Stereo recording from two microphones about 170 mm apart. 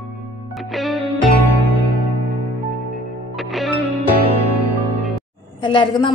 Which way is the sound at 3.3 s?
Centre (ahead or behind).